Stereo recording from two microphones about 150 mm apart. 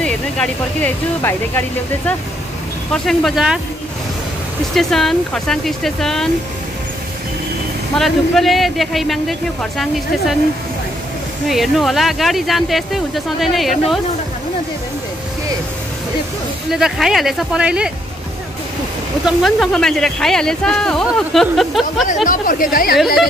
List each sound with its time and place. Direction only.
0.0 s speech: 10° left (ahead or behind)
2.9 s speech: centre (ahead or behind)
4.7 s speech: centre (ahead or behind)
7.9 s speech: centre (ahead or behind)
11.4 s speech: centre (ahead or behind)
16.7 s speech: 5° right (ahead or behind)
19.2 s speech: centre (ahead or behind)
22.0 s speech: 60° left (ahead or behind)